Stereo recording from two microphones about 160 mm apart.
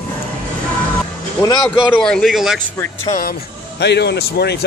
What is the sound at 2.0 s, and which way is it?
Speech, 5° left (ahead or behind).